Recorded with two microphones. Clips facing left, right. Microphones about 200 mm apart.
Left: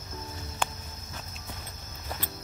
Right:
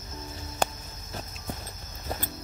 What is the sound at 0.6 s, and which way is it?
Cricket, 40° right (ahead or behind).